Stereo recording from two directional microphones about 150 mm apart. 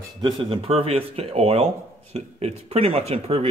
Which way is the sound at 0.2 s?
35° right (ahead or behind).